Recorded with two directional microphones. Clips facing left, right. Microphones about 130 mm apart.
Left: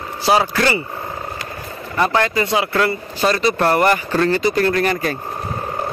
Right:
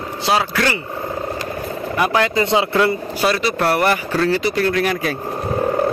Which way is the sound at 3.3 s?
5° right (ahead or behind).